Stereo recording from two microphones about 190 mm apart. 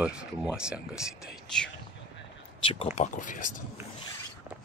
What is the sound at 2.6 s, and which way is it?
Speech, 35° left (ahead or behind).